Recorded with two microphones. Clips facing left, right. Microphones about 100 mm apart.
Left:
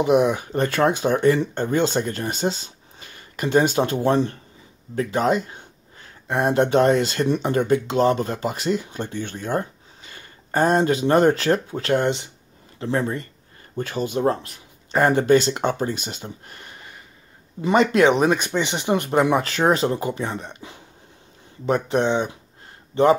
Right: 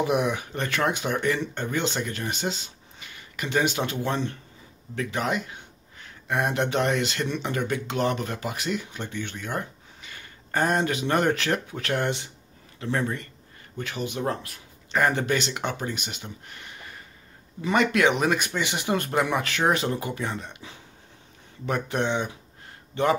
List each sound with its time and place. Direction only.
0.0 s speech: 25° left (ahead or behind)
19.3 s speech: 30° left (ahead or behind)